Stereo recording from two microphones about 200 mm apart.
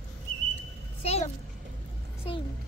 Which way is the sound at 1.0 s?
30° left (ahead or behind).